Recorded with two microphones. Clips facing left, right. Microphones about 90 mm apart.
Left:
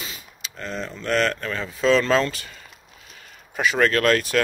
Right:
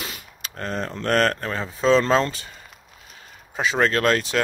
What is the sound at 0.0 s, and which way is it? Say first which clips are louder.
Speech: right 2 dB; 55° right (ahead or behind).